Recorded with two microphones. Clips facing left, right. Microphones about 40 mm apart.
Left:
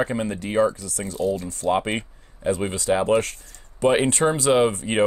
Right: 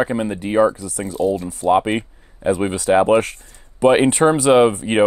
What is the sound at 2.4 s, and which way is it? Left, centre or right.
Speech, right.